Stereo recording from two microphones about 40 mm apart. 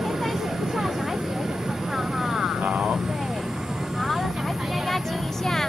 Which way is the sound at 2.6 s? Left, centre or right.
Right.